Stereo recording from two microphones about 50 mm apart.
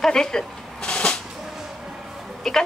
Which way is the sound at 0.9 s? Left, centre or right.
Left.